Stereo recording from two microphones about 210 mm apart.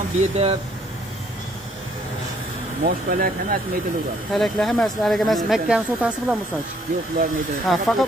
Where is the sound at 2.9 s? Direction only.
40° right (ahead or behind).